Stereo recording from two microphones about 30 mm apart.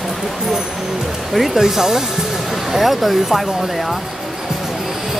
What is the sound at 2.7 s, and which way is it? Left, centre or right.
Speech, centre.